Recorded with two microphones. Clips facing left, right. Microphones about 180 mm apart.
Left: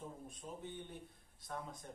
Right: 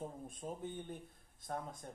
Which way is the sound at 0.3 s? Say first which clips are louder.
Right 4 dB; 50° right (ahead or behind).